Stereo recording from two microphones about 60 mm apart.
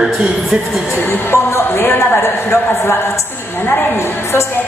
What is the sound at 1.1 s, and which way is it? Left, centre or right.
A woman's voice, left.